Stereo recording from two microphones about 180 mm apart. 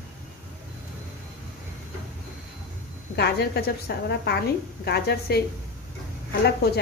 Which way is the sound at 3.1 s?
65° left (ahead or behind).